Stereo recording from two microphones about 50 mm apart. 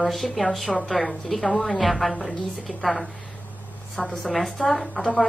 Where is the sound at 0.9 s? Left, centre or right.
Centre.